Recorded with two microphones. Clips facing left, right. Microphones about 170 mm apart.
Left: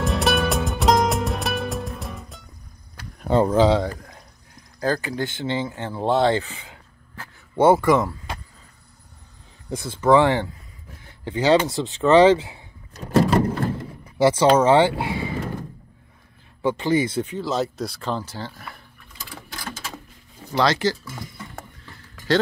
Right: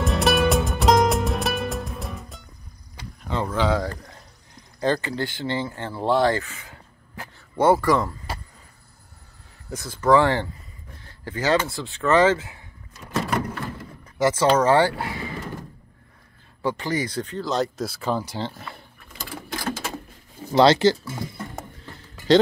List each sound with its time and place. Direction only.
0.0 s music: centre (ahead or behind)
3.2 s speech: 40° left (ahead or behind)
3.9 s speech: 5° left (ahead or behind)
5.2 s speech: 20° left (ahead or behind)
7.5 s speech: 25° left (ahead or behind)
9.8 s speech: 20° left (ahead or behind)
12.9 s a sound: 35° left (ahead or behind)
14.6 s speech: 20° left (ahead or behind)
16.6 s speech: 20° left (ahead or behind)
17.4 s speech: centre (ahead or behind); by 18.7 s 20° right (ahead or behind)
20.5 s speech: 25° right (ahead or behind)